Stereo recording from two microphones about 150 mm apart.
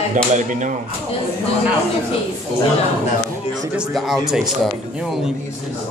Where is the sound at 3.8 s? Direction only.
Centre (ahead or behind).